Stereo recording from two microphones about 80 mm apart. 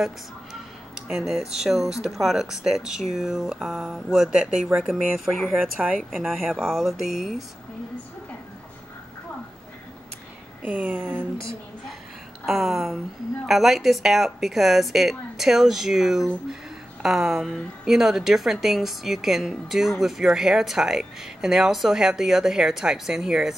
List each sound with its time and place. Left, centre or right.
0.0 s a woman's voice: centre
10.6 s speech: centre
12.4 s a woman's voice: centre